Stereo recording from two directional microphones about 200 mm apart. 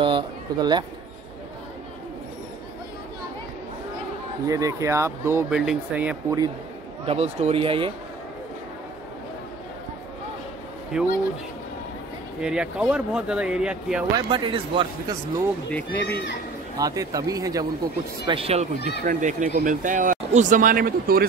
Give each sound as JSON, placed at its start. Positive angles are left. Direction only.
{"t": 0.0, "sound": "speech", "side_deg": -20}
{"t": 4.5, "sound": "speech", "side_deg": -15}
{"t": 7.1, "sound": "speech", "side_deg": -30}
{"t": 10.9, "sound": "speech", "side_deg": -5}
{"t": 12.4, "sound": "speech", "side_deg": -5}
{"t": 14.1, "sound": "speech", "side_deg": -25}
{"t": 15.7, "sound": "speech", "side_deg": 10}
{"t": 16.7, "sound": "speech", "side_deg": -15}
{"t": 18.8, "sound": "speech", "side_deg": 55}
{"t": 19.0, "sound": "speech", "side_deg": -40}